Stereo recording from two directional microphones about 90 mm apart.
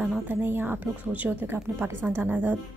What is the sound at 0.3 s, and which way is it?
A woman's voice, 25° right (ahead or behind).